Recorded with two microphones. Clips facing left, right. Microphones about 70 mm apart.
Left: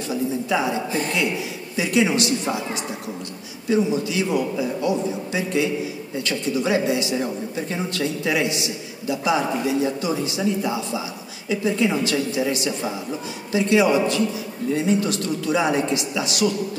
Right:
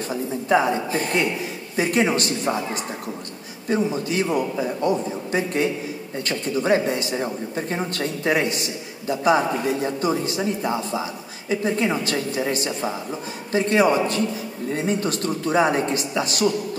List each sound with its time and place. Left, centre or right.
0.1 s speech: right
3.6 s speech: right